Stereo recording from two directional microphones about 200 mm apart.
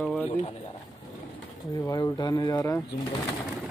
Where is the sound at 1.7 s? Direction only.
20° left (ahead or behind).